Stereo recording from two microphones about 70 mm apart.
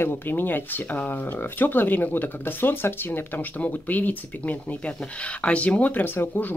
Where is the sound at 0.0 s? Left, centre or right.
Left.